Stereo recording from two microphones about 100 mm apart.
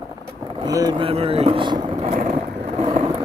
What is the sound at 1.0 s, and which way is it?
Speech, 75° right (ahead or behind).